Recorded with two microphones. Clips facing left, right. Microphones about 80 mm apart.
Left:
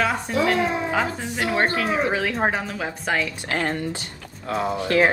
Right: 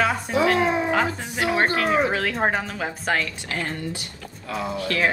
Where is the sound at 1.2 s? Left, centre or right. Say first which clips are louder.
Even; centre.